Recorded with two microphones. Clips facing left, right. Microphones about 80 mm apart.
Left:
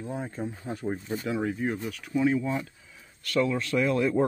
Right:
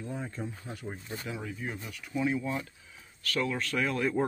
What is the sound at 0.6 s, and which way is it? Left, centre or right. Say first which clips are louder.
Speech: left 8 dB; left.